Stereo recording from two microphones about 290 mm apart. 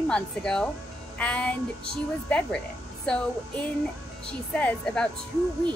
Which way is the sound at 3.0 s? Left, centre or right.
Centre.